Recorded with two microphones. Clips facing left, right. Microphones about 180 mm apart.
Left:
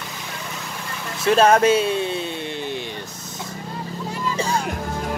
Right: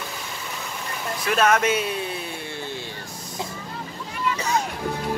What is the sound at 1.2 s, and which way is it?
Speech, 30° left (ahead or behind).